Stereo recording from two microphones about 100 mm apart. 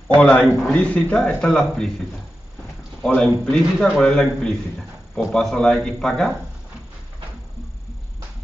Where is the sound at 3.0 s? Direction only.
10° left (ahead or behind).